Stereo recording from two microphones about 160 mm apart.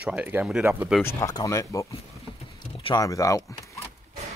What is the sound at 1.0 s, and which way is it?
Speech, 20° left (ahead or behind).